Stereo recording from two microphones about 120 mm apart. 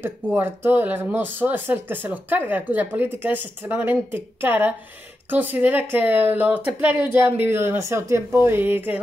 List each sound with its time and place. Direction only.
0.0 s speech: 15° right (ahead or behind)